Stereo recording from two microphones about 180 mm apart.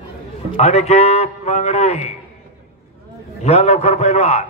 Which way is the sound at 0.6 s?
35° left (ahead or behind).